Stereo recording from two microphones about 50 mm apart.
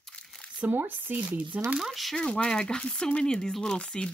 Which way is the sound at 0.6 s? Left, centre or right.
Right.